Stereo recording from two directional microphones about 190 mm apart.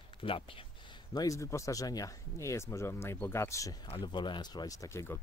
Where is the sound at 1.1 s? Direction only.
15° left (ahead or behind).